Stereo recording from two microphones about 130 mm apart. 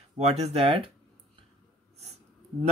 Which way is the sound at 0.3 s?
50° right (ahead or behind).